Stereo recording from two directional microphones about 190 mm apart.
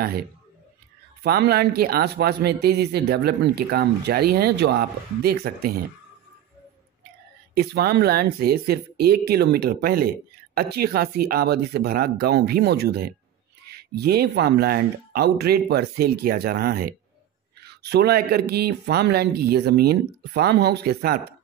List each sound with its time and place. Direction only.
0.0 s speech: 55° right (ahead or behind)
7.5 s speech: 55° right (ahead or behind)